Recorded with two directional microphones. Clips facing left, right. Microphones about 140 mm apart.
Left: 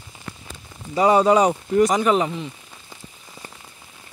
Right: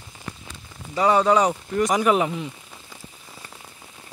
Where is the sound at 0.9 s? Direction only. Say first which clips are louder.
Left 3 dB; 15° left (ahead or behind).